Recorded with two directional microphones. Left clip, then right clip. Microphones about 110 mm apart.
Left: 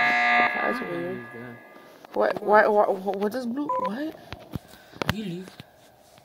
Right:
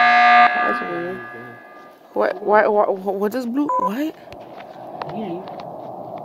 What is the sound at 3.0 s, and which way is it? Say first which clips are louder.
Speech: right 5 dB; 60° right (ahead or behind).